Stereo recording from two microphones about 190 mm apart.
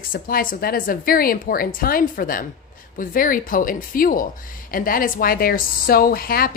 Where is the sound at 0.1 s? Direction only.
50° left (ahead or behind).